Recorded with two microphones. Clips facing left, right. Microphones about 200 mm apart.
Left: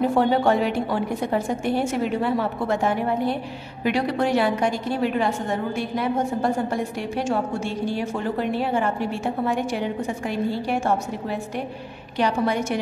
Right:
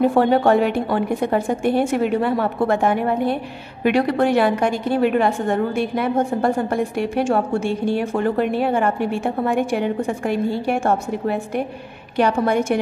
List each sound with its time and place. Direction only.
0.2 s a woman's voice: 60° right (ahead or behind)